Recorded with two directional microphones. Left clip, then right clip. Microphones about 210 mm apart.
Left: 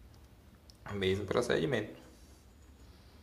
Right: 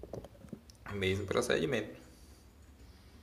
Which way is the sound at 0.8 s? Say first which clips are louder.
Left 1 dB; 5° left (ahead or behind).